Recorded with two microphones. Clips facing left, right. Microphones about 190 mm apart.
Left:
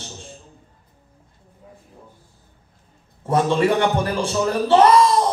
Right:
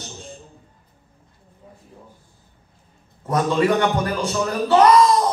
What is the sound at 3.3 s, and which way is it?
Speech, 30° left (ahead or behind).